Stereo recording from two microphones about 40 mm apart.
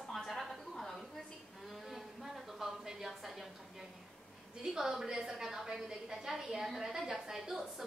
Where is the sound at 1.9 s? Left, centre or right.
Centre.